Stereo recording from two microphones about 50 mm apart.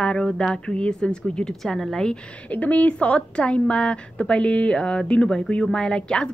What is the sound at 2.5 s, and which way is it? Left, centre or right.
A woman's voice, left.